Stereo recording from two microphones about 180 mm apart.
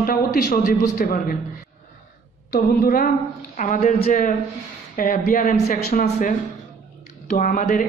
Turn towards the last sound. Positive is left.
turn(degrees=50)  # may be behind; listen again after turning